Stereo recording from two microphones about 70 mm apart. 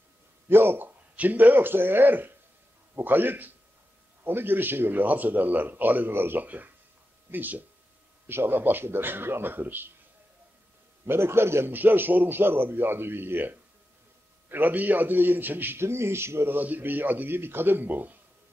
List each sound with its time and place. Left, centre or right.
0.5 s a man's voice: right
11.1 s a man's voice: right